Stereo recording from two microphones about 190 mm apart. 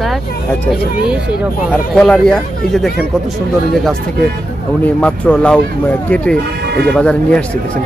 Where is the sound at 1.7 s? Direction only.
5° left (ahead or behind).